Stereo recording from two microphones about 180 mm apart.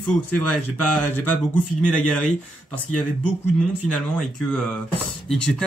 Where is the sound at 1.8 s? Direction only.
5° left (ahead or behind).